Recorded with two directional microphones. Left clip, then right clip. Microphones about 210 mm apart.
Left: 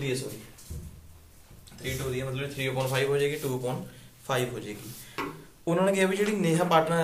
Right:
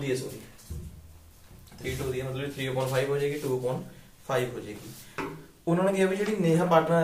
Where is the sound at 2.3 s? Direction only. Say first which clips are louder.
Even; 15° left (ahead or behind).